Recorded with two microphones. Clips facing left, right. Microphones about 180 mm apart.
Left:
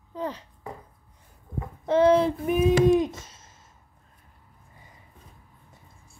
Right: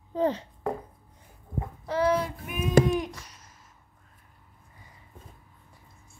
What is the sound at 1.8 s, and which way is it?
Child singing, 25° left (ahead or behind).